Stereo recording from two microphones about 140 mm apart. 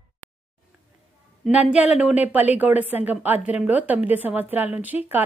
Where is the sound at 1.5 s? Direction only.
10° right (ahead or behind).